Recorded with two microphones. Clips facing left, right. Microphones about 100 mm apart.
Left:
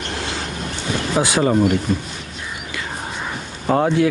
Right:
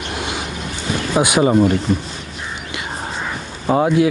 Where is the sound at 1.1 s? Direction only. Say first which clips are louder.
Right 3 dB; 15° right (ahead or behind).